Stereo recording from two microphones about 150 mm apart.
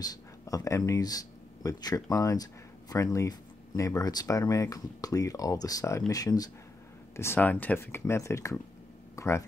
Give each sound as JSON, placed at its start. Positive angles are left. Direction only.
{"t": 0.0, "sound": "speech", "side_deg": 25}
{"t": 7.2, "sound": "speech", "side_deg": 15}
{"t": 9.1, "sound": "a sound", "side_deg": 20}